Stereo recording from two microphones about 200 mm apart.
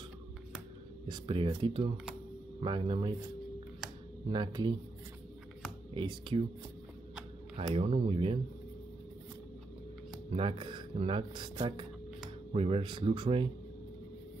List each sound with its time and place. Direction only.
1.0 s speech: 25° right (ahead or behind)
4.3 s speech: 20° right (ahead or behind)
5.9 s speech: 25° right (ahead or behind)
7.5 s speech: 30° right (ahead or behind)
10.3 s speech: 25° right (ahead or behind)